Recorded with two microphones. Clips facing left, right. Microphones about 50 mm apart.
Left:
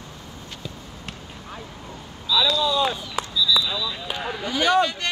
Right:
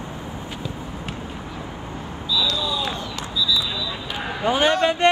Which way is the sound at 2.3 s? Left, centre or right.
Centre.